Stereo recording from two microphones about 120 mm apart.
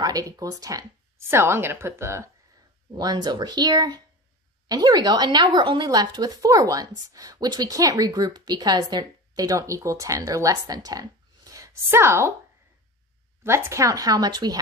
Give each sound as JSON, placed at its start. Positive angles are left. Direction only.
{"t": 0.0, "sound": "speech", "side_deg": -30}
{"t": 2.9, "sound": "speech", "side_deg": -35}
{"t": 13.4, "sound": "speech", "side_deg": -20}